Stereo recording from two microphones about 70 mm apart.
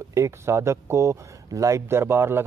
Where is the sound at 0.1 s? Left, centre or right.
Right.